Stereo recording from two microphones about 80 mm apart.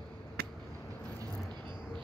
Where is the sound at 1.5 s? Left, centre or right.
Right.